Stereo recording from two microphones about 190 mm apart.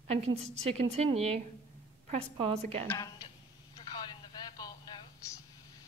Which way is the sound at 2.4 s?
35° right (ahead or behind).